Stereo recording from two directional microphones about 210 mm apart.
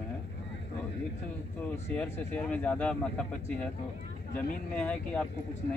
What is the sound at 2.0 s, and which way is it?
Speech, 5° left (ahead or behind).